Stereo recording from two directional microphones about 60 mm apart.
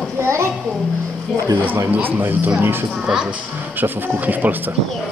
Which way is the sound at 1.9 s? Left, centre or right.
Right.